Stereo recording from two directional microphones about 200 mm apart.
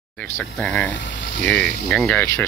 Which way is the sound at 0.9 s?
60° left (ahead or behind).